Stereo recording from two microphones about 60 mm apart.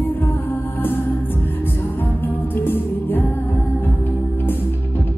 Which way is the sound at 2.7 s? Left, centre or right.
Left.